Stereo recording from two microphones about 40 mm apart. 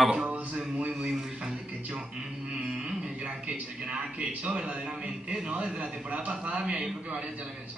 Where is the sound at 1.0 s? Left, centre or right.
Centre.